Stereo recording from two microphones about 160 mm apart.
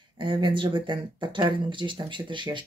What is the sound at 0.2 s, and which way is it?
A woman's voice, 30° right (ahead or behind).